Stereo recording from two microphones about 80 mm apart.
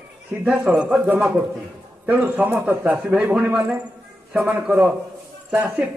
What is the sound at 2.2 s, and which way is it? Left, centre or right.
A man's voice, right.